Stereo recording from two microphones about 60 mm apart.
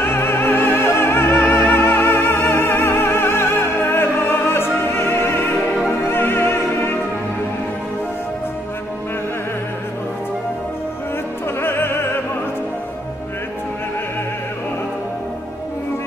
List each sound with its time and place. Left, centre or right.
0.0 s opera: left
6.0 s music: left
11.6 s opera: left